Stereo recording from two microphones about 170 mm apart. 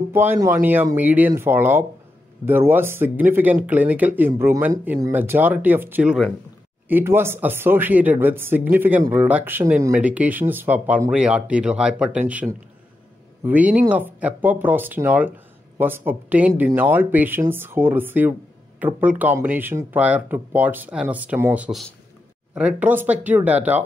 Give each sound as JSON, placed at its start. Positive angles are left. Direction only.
{"t": 0.1, "sound": "speech", "side_deg": -15}
{"t": 13.5, "sound": "speech", "side_deg": -10}